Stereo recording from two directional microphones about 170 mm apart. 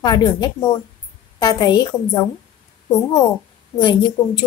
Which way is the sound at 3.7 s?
25° left (ahead or behind).